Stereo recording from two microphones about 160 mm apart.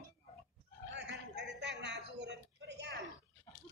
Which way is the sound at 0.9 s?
90° right.